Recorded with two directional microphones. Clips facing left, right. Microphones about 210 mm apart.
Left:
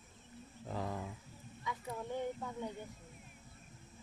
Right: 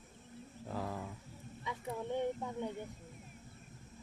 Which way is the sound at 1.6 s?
25° right (ahead or behind).